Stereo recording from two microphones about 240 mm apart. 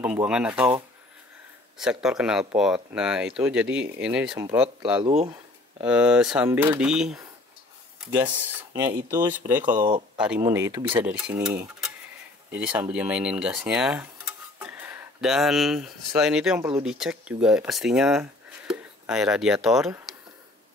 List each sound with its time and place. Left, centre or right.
0.0 s speech: centre
1.8 s speech: centre
5.0 s a sound: right
5.9 s speech: centre
10.4 s speech: centre
11.0 s speech: centre
14.6 s a sound: centre
16.2 s speech: centre